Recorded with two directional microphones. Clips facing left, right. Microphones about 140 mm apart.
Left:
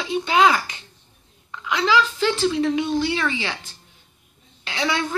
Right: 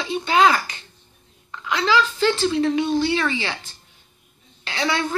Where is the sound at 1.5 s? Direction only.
10° left (ahead or behind).